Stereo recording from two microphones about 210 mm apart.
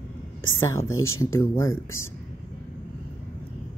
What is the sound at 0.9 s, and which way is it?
Speech, 80° left.